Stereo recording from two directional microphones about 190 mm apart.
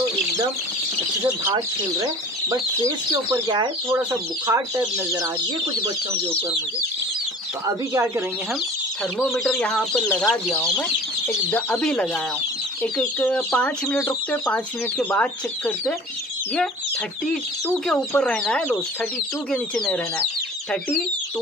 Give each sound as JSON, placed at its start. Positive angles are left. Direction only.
{"t": 1.2, "sound": "speech", "side_deg": -15}
{"t": 7.6, "sound": "speech", "side_deg": -15}
{"t": 9.2, "sound": "speech", "side_deg": 0}
{"t": 17.3, "sound": "speech", "side_deg": 5}